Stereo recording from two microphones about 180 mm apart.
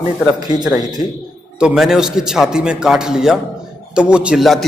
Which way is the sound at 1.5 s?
5° right (ahead or behind).